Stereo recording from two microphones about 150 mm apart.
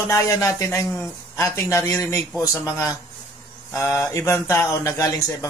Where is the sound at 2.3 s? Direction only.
Centre (ahead or behind).